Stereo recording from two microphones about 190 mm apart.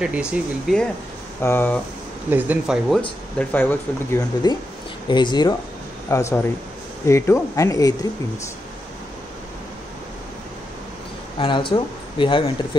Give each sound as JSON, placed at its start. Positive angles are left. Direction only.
{"t": 0.0, "sound": "speech", "side_deg": -5}
{"t": 1.4, "sound": "speech", "side_deg": 10}
{"t": 2.2, "sound": "speech", "side_deg": -10}
{"t": 3.3, "sound": "speech", "side_deg": 10}
{"t": 11.3, "sound": "speech", "side_deg": 25}